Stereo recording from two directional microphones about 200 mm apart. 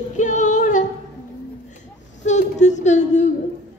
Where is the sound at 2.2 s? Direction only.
35° left (ahead or behind).